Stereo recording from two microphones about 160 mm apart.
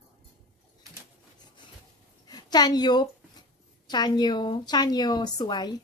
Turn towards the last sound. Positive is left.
turn(degrees=25)  # may be behind; listen again after turning